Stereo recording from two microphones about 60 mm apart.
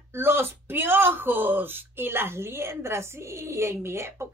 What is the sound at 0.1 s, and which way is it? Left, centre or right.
Speech, right.